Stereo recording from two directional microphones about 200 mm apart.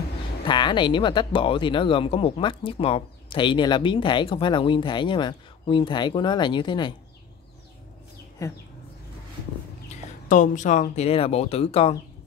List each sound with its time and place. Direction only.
0.5 s speech: 20° left (ahead or behind)
8.4 s speech: 15° left (ahead or behind)
9.8 s speech: 40° left (ahead or behind)